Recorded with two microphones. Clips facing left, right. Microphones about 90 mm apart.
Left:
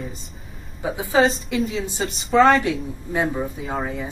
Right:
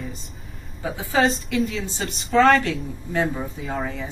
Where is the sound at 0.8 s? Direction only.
15° left (ahead or behind).